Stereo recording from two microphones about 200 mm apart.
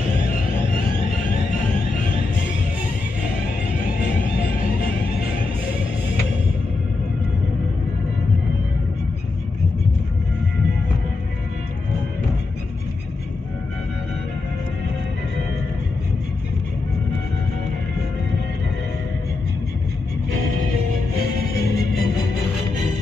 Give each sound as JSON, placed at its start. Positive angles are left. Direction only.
{"t": 21.6, "sound": "music", "side_deg": 50}